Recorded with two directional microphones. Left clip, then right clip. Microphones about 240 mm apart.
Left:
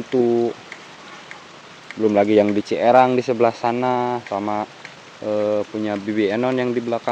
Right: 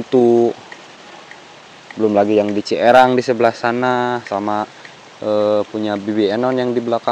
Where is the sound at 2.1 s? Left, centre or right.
Centre.